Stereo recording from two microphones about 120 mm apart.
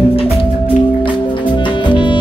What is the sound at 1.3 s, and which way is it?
Music, 40° left (ahead or behind).